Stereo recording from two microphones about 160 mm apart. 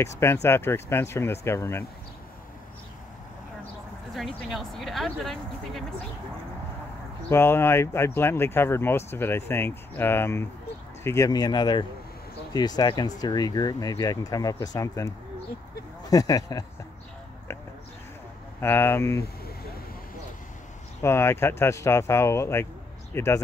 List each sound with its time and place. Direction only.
0.2 s speech: 15° left (ahead or behind)
4.1 s speech: centre (ahead or behind)
7.2 s speech: 15° left (ahead or behind)
18.6 s speech: 15° left (ahead or behind)
21.0 s speech: 15° left (ahead or behind)